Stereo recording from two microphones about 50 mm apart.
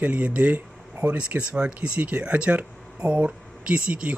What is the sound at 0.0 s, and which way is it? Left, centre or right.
Speech, right.